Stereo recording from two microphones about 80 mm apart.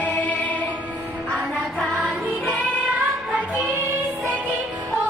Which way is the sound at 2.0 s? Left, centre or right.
Centre.